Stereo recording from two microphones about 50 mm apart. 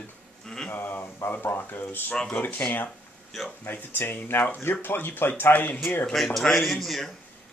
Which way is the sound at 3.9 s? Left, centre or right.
Left.